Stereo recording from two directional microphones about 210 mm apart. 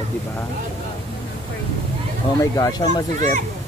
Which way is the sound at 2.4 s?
15° left (ahead or behind).